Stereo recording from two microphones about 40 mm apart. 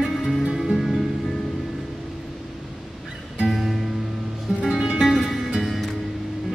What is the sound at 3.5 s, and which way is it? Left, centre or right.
Music, centre.